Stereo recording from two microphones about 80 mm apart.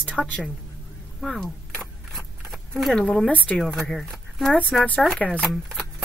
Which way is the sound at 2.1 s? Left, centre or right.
Centre.